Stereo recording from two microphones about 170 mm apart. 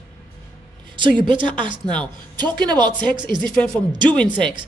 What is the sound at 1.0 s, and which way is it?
A woman's voice, 30° right (ahead or behind).